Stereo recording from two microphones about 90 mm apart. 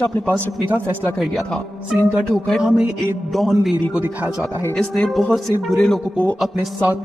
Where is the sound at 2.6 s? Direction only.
10° right (ahead or behind).